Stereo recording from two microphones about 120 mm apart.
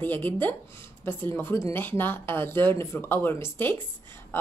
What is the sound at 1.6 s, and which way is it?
Speech, 20° left (ahead or behind).